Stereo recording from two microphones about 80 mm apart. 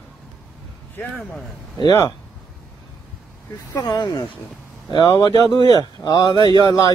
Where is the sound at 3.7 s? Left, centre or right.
Left.